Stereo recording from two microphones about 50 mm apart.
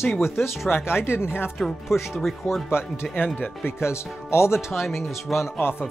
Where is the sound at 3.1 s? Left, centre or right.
Left.